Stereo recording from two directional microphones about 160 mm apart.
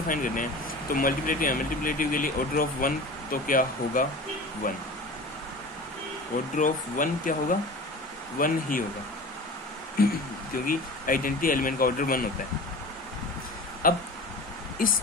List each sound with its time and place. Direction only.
0.1 s speech: 55° left (ahead or behind)
6.5 s speech: 55° left (ahead or behind)
10.0 s speech: 70° left (ahead or behind)
13.8 s speech: 60° left (ahead or behind)